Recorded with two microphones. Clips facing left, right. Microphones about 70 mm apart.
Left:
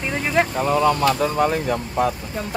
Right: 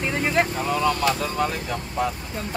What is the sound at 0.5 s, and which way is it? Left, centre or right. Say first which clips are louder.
Speech: left 5 dB; left.